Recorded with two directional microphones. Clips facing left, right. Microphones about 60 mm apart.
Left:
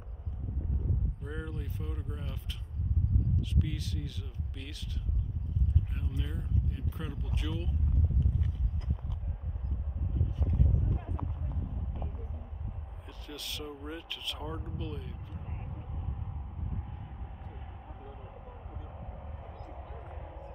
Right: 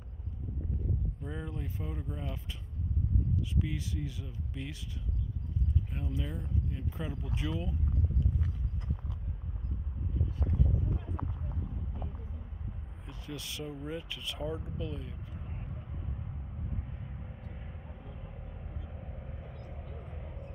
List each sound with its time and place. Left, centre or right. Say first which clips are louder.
1.2 s speech: even; centre
5.9 s speech: right 2 dB; centre
13.0 s speech: right 2 dB; centre